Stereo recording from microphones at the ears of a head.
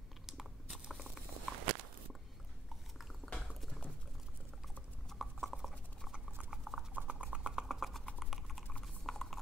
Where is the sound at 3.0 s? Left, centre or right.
Centre.